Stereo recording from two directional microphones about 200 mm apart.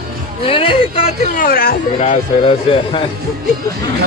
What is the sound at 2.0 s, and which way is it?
A man's voice, 30° left (ahead or behind).